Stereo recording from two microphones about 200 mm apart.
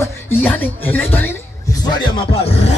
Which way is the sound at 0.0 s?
10° left (ahead or behind).